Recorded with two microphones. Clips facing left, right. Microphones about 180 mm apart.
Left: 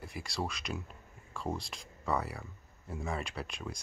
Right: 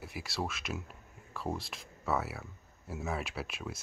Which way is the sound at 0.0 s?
5° right (ahead or behind).